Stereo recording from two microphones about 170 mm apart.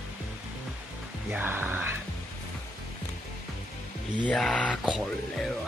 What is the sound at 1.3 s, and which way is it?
Speech, 10° right (ahead or behind).